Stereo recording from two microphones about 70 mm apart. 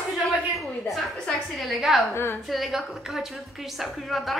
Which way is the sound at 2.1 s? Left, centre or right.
Left.